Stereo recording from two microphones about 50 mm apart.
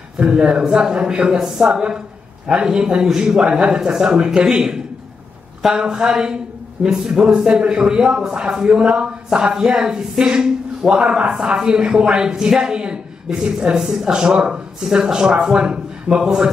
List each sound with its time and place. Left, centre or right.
0.2 s a man's voice: right